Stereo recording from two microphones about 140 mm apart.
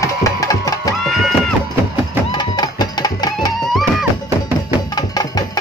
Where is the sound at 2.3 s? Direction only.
30° left (ahead or behind).